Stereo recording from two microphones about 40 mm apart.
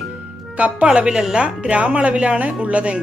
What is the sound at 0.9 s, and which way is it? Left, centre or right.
Speech, right.